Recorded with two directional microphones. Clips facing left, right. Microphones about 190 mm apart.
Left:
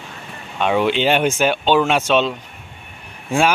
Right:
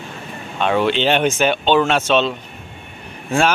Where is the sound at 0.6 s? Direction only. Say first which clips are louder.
Even; 10° left (ahead or behind).